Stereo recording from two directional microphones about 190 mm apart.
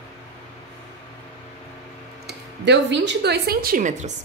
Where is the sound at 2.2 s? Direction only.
65° right (ahead or behind); by 4.1 s 45° right (ahead or behind).